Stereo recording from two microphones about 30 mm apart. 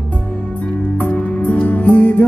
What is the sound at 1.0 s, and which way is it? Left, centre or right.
Music, left.